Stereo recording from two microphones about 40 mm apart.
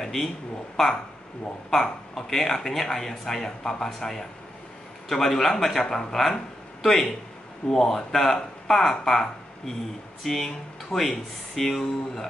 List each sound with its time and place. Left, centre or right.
0.0 s a sound: centre
1.7 s speech: centre
5.9 s speech: centre